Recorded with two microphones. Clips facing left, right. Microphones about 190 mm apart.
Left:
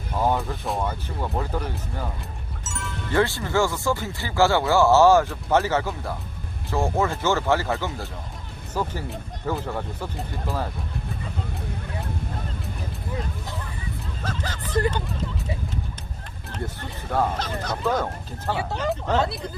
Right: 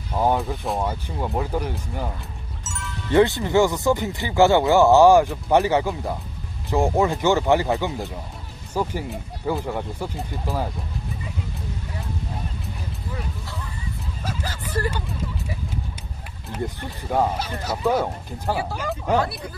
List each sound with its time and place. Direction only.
0.2 s speech: 15° right (ahead or behind)
2.6 s music: centre (ahead or behind)
3.1 s speech: 20° right (ahead or behind)
14.2 s a sound: 10° right (ahead or behind)
16.5 s speech: 15° right (ahead or behind)
19.1 s speech: 25° left (ahead or behind)